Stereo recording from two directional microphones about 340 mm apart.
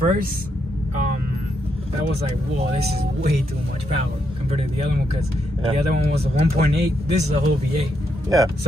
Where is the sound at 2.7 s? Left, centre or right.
Right.